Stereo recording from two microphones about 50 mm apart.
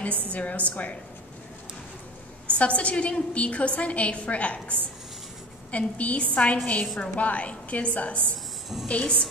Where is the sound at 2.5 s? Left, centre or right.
Left.